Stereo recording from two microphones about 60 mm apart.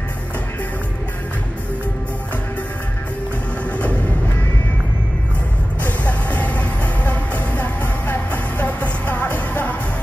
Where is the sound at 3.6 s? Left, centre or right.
Left.